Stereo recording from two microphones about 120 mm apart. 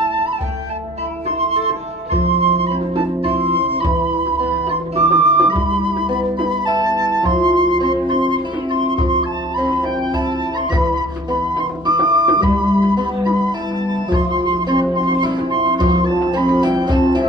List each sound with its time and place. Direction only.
2.2 s music: 60° right (ahead or behind)
4.9 s music: 55° right (ahead or behind)
6.7 s flute: 35° right (ahead or behind)
11.9 s music: 40° right (ahead or behind)